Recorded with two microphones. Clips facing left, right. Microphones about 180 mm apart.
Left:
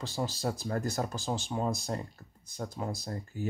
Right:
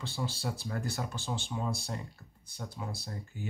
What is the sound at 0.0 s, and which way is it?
Speech, 40° left (ahead or behind).